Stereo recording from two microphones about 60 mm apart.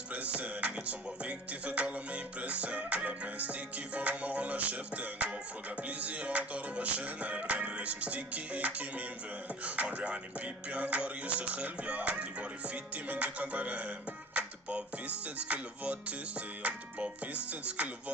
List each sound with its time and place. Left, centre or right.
0.4 s music: right